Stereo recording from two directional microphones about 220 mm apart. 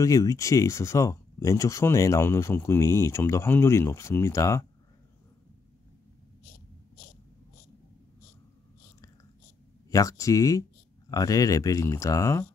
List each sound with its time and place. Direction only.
0.0 s speech: 15° left (ahead or behind)
9.8 s speech: 15° left (ahead or behind)